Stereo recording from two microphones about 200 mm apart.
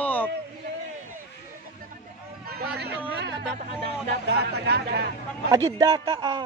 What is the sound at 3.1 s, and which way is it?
Speech, 60° right (ahead or behind).